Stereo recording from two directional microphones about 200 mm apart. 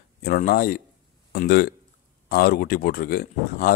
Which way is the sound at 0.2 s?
45° left (ahead or behind).